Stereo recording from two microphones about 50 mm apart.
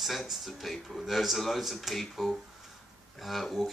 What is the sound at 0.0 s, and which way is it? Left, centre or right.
Speech, centre.